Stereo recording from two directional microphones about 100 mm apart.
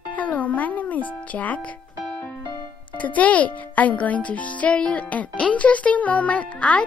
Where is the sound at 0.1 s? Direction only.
15° left (ahead or behind).